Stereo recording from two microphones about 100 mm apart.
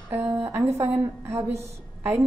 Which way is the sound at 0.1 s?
25° right (ahead or behind).